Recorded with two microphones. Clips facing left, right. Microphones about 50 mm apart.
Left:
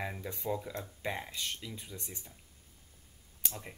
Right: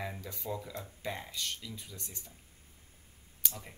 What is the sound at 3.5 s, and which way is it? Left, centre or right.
Speech, centre.